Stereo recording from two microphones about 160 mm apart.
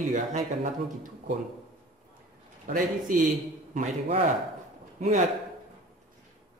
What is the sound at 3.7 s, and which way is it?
A man's voice, 40° right (ahead or behind).